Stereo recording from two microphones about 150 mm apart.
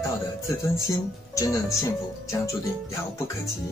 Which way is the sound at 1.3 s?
20° left (ahead or behind).